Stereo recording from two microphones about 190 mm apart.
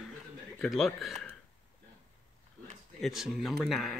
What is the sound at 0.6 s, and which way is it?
Speech, centre (ahead or behind).